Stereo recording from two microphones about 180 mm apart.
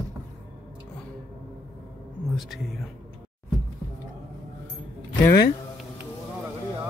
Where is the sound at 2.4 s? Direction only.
Centre (ahead or behind).